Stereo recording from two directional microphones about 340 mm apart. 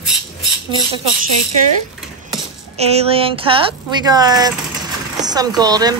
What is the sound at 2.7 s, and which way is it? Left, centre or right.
A woman's voice, centre.